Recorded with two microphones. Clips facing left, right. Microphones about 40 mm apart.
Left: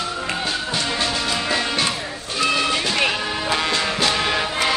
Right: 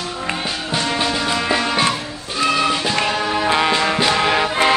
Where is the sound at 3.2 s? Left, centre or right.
Centre.